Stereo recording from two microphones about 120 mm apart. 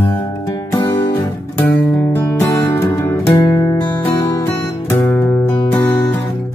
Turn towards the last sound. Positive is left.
turn(degrees=15)  # may be behind; listen again after turning